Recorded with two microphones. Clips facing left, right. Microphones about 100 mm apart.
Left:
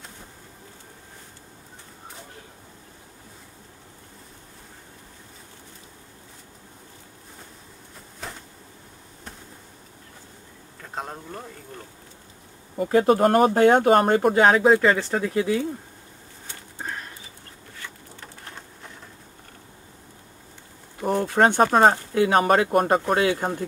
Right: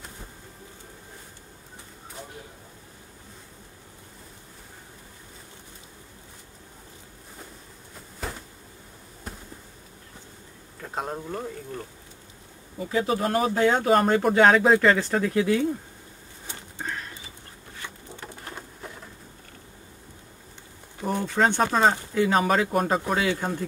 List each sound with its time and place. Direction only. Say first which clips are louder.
8.2 s a sound: right 3 dB; centre (ahead or behind)
10.8 s speech: right 3 dB; 5° right (ahead or behind)
12.7 s speech: left 7 dB; 55° left (ahead or behind)
14.2 s speech: left 1 dB; 5° left (ahead or behind)
16.7 s bird: even; 10° left (ahead or behind)
18.2 s bird: right 3 dB; 5° right (ahead or behind)
21.2 s a sound: left 4 dB; 55° left (ahead or behind)
21.5 s speech: left 4 dB; 50° left (ahead or behind)